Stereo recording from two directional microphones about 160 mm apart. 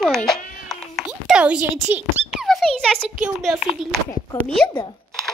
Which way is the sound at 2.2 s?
Centre (ahead or behind).